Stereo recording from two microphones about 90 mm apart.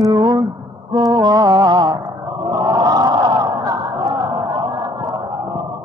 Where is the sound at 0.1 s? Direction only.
50° right (ahead or behind).